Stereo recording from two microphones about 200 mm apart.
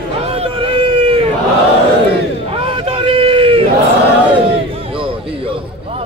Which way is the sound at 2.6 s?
25° right (ahead or behind).